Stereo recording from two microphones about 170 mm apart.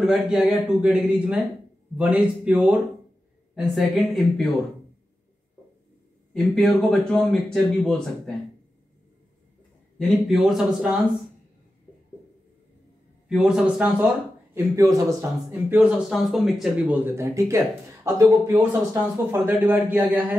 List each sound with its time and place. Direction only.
0.0 s a man's voice: centre (ahead or behind)
6.3 s speech: centre (ahead or behind)
9.9 s speech: centre (ahead or behind)
13.3 s speech: 5° right (ahead or behind)
14.5 s a man's voice: 20° right (ahead or behind)
19.3 s a man's voice: 10° right (ahead or behind)